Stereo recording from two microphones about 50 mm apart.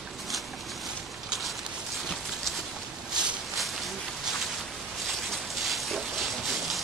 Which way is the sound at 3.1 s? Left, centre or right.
Centre.